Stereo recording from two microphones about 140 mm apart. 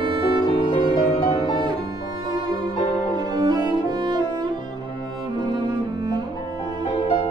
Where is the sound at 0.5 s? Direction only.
45° left (ahead or behind).